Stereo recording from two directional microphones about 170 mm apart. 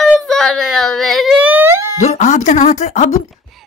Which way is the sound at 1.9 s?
40° left (ahead or behind).